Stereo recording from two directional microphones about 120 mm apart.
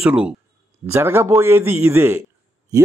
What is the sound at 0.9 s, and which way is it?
A man's voice, 20° right (ahead or behind).